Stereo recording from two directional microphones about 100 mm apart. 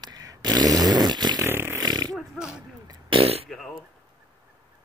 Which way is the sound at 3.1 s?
75° right (ahead or behind).